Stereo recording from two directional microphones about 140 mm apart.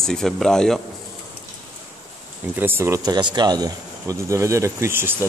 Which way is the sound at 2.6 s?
15° right (ahead or behind).